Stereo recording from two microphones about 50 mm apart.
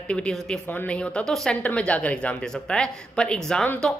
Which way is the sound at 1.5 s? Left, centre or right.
Left.